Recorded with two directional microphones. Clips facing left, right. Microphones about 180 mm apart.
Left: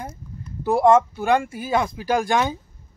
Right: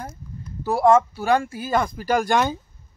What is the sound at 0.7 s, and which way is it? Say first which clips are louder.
Speech: left 1 dB; centre (ahead or behind).